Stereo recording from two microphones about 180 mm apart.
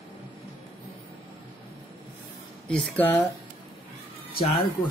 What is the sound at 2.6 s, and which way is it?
Speech, 5° left (ahead or behind).